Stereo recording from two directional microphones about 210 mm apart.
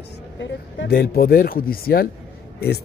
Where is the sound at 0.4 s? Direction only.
55° left (ahead or behind).